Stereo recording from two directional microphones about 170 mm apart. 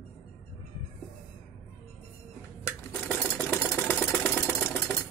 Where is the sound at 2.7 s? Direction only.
10° left (ahead or behind).